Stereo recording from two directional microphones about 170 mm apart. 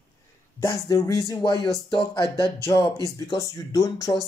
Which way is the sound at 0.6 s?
20° left (ahead or behind).